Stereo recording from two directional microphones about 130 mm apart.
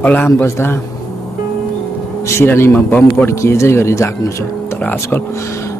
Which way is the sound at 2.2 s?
20° left (ahead or behind).